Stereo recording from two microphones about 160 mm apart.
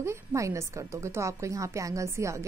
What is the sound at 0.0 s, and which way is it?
A woman's voice, 15° right (ahead or behind).